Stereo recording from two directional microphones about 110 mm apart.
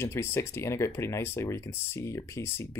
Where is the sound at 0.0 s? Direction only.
20° left (ahead or behind).